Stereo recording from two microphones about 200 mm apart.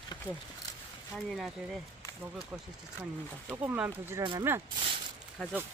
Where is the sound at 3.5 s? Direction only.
10° right (ahead or behind).